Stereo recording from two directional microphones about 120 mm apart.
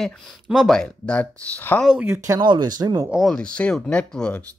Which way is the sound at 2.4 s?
40° right (ahead or behind).